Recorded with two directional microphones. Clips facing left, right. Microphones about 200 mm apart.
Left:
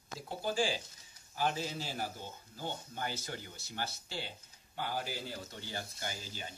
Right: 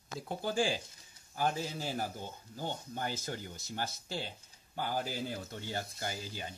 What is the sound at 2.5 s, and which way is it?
Speech, 45° right (ahead or behind).